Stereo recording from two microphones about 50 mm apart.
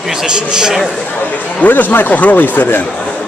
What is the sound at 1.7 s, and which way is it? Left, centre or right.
Speech, left.